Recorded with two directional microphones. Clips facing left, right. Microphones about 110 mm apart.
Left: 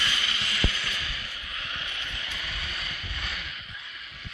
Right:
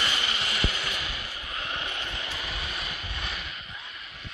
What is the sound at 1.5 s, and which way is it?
Vehicle, 35° right (ahead or behind).